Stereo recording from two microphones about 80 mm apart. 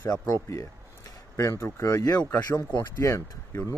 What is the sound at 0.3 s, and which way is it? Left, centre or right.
Speech, left.